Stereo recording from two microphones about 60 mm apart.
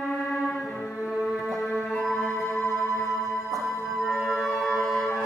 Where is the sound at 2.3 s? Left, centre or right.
Left.